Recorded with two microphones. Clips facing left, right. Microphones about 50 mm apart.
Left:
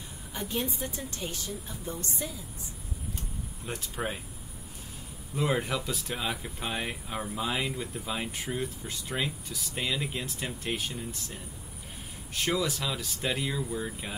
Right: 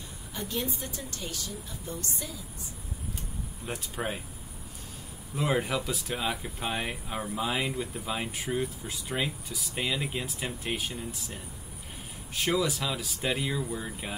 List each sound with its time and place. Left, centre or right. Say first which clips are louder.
0.3 s a woman's voice: left 1 dB; left
3.6 s speech: even; centre
5.3 s speech: right 1 dB; centre